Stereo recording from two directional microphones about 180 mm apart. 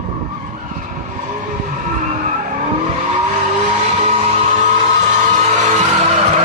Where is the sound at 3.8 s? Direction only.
40° right (ahead or behind).